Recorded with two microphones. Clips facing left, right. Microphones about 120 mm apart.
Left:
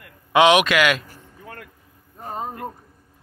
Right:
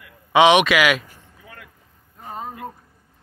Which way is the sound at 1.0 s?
50° left (ahead or behind).